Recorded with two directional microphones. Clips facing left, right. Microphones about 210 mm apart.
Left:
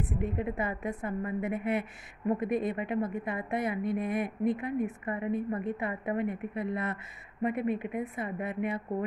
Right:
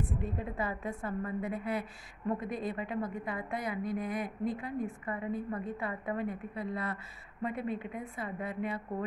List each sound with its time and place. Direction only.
0.4 s a woman's voice: 20° left (ahead or behind)